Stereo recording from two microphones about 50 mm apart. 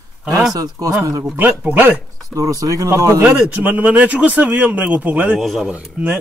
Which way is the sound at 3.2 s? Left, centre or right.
Right.